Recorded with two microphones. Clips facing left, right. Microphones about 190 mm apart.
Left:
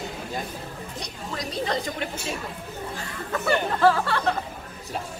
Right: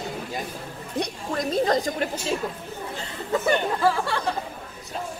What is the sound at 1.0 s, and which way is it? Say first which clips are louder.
Speech: right 8 dB; 50° right (ahead or behind).